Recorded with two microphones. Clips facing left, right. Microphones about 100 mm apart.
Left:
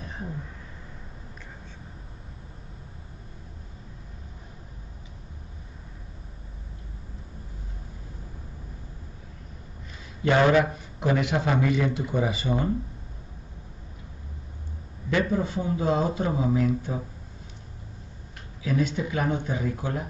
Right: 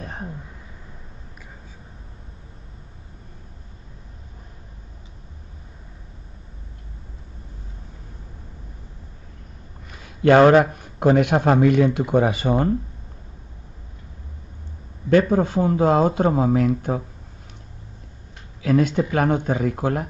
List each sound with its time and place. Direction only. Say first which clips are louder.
0.0 s a sound: right 4 dB; 55° right (ahead or behind)
10.2 s a man's voice: right 7 dB; 55° right (ahead or behind)
15.0 s a man's voice: right 8 dB; 55° right (ahead or behind)
18.6 s a man's voice: right 7 dB; 60° right (ahead or behind)